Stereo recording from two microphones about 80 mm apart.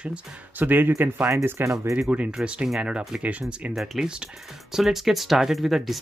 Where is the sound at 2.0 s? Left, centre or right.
Centre.